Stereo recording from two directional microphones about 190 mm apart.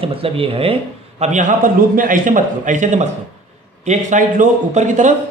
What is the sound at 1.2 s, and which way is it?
A man's voice, 40° right (ahead or behind).